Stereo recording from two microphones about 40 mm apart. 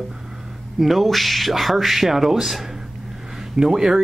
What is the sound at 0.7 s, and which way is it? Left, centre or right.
Speech, centre.